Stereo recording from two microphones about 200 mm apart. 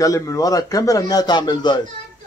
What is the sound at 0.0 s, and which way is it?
Speech, 15° left (ahead or behind).